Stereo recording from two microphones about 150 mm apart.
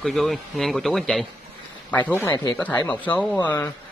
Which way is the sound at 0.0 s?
Centre (ahead or behind).